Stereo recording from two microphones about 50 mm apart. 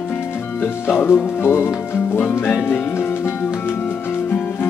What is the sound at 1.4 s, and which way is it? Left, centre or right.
Speech, left.